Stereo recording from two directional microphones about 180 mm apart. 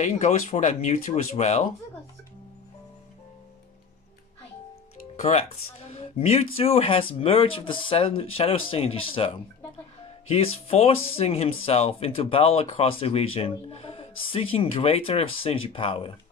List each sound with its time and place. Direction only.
0.0 s speech: 40° left (ahead or behind)
5.1 s speech: 35° left (ahead or behind)